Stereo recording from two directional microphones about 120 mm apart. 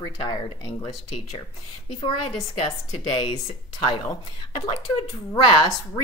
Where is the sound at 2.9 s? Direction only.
50° left (ahead or behind).